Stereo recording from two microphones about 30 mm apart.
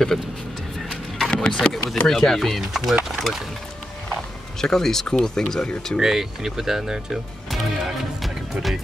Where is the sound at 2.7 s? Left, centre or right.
Centre.